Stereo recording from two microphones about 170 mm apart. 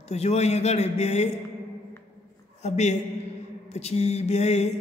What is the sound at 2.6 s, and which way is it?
A man's voice, 40° left (ahead or behind).